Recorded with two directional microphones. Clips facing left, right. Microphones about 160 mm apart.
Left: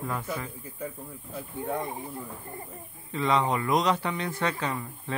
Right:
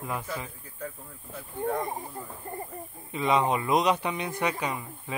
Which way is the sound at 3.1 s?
20° right (ahead or behind).